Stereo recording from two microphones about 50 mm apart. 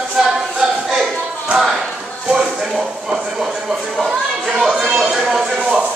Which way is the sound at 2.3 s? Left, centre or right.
Centre.